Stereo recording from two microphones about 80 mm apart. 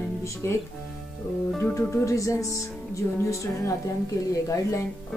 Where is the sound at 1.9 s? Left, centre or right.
Left.